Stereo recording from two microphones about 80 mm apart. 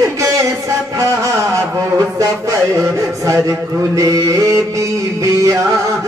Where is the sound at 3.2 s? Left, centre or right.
Right.